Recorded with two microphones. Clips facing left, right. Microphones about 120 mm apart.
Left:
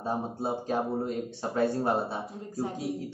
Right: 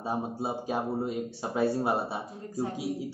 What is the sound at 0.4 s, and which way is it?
A man's voice, 10° right (ahead or behind).